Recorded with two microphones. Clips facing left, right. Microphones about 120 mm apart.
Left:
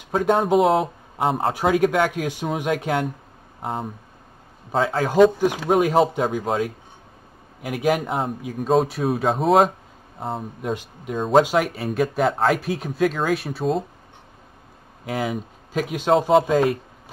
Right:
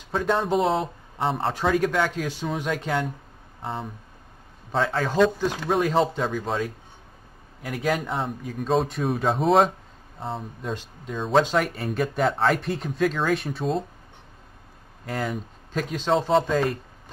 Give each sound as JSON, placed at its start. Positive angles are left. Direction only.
{"t": 0.2, "sound": "speech", "side_deg": 50}
{"t": 0.5, "sound": "a man's voice", "side_deg": 0}
{"t": 3.6, "sound": "speech", "side_deg": 45}
{"t": 4.7, "sound": "a man's voice", "side_deg": 5}
{"t": 10.6, "sound": "a man's voice", "side_deg": 10}
{"t": 15.0, "sound": "speech", "side_deg": 5}